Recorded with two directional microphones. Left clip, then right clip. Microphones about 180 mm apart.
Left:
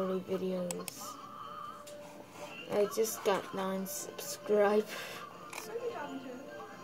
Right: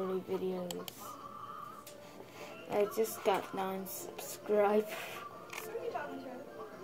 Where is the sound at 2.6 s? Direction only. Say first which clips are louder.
Left 1 dB; 5° right (ahead or behind).